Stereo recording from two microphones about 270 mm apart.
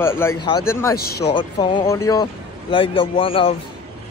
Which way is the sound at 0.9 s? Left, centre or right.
Left.